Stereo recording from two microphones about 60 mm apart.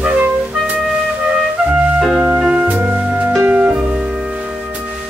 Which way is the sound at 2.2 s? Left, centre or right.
Centre.